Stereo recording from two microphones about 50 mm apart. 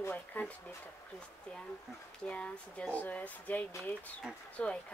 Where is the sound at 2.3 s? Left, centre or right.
Left.